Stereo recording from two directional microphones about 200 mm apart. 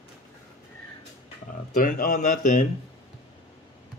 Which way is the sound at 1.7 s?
40° left (ahead or behind).